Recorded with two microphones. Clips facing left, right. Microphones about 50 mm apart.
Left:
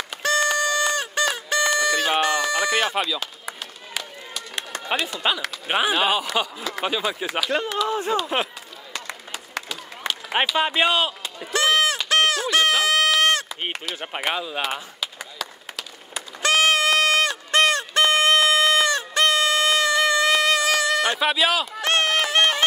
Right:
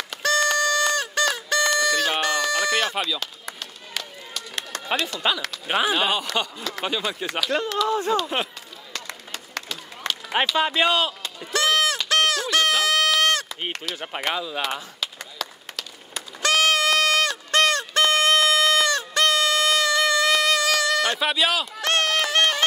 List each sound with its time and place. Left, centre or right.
0.1 s a sound: left
5.9 s speech: centre
8.9 s a sound: centre
10.3 s speech: left
11.5 s honk: left
12.1 s a sound: left
13.7 s speech: centre
14.6 s chop: centre
16.4 s sheep: left
21.1 s speech: centre
21.8 s run: left